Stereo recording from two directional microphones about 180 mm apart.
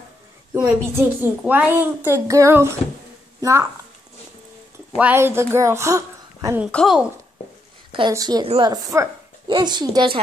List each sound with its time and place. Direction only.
0.6 s a child's voice: 10° right (ahead or behind)
4.9 s a woman's voice: 10° right (ahead or behind)
6.7 s speech: centre (ahead or behind)
8.1 s a woman's voice: 20° right (ahead or behind)